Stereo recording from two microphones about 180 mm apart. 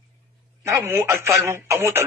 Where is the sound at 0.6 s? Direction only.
15° right (ahead or behind).